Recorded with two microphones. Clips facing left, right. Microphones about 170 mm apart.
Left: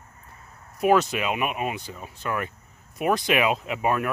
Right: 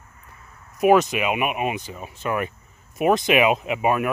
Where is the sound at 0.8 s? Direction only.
15° right (ahead or behind).